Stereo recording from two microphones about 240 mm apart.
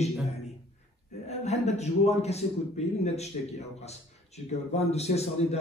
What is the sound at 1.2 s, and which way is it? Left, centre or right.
A man's voice, left.